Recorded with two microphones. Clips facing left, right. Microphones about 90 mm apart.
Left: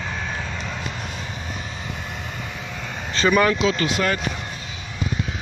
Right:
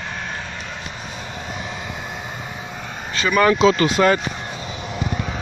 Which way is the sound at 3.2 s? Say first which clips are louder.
Left 2 dB; 15° left (ahead or behind).